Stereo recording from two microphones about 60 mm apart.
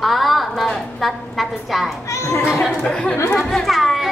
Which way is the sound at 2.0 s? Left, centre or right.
Left.